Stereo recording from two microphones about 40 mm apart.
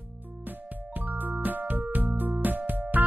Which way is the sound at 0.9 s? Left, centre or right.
Right.